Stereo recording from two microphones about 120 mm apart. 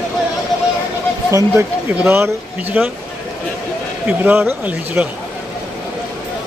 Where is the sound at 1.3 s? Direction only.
20° right (ahead or behind).